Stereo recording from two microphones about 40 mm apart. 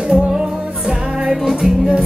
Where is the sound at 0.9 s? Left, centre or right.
Centre.